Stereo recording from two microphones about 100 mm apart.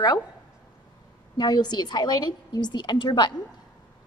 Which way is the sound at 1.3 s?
45° left (ahead or behind).